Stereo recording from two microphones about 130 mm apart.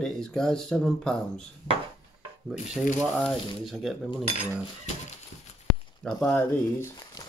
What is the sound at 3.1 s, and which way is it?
Speech, 5° left (ahead or behind).